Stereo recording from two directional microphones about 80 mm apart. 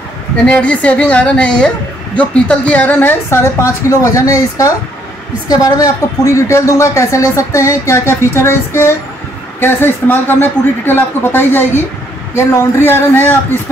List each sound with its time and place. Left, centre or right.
0.5 s a woman's voice: centre